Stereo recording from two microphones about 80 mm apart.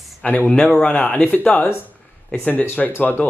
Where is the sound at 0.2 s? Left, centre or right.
Centre.